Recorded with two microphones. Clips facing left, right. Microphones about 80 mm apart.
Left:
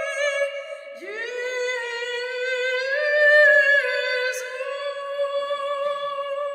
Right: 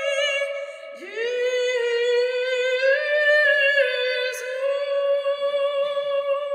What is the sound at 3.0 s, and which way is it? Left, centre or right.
Music, centre.